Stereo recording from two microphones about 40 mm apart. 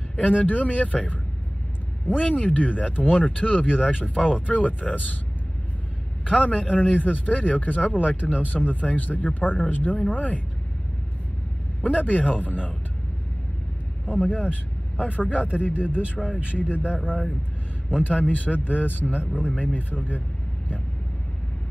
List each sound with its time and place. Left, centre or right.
0.4 s speech: left
6.4 s speech: left
11.8 s speech: left
14.0 s speech: left
16.3 s speech: right
16.5 s speech: left
18.0 s speech: left